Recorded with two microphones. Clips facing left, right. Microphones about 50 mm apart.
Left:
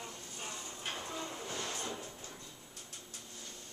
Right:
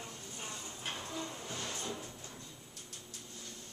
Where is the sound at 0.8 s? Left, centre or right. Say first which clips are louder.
Even; centre.